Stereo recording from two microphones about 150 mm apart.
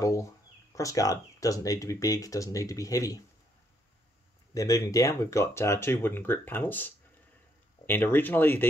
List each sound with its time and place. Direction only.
0.0 s a sound: 20° left (ahead or behind)
0.7 s speech: 20° left (ahead or behind)
4.6 s speech: 20° left (ahead or behind)